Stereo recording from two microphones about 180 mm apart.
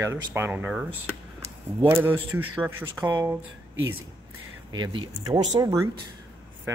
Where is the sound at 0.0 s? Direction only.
15° right (ahead or behind).